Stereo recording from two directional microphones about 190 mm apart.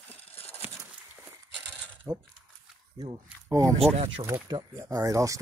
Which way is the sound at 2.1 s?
15° right (ahead or behind).